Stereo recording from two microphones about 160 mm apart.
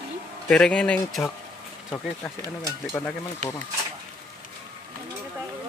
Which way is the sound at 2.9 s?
15° left (ahead or behind).